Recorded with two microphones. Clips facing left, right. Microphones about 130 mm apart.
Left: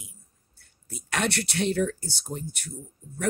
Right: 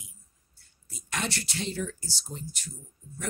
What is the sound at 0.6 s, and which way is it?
Speech, 60° left (ahead or behind).